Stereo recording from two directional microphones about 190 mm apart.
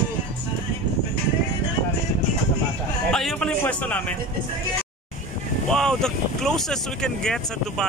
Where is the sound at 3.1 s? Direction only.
5° left (ahead or behind).